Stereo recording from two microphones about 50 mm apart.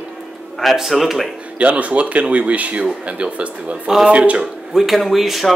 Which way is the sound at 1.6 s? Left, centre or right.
Right.